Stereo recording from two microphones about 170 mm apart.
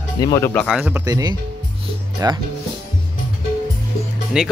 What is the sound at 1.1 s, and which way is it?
Speech, 20° right (ahead or behind).